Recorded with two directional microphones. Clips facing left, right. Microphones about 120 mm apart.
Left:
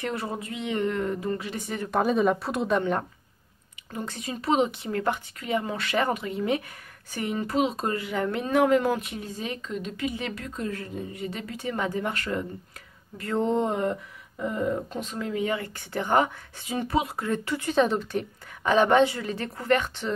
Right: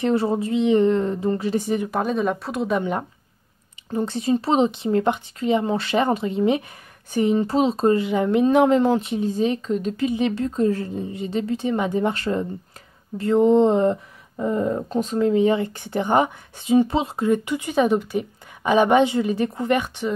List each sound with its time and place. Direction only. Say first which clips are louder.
0.0 s speech: right 11 dB; 30° right (ahead or behind)
1.9 s speech: even; centre (ahead or behind)
2.8 s a woman's voice: right 2 dB; 15° right (ahead or behind)
3.9 s speech: right 12 dB; 30° right (ahead or behind)
10.1 s a woman's voice: right 11 dB; 25° right (ahead or behind)